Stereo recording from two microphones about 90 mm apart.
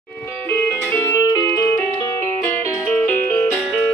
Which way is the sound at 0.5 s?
20° left (ahead or behind).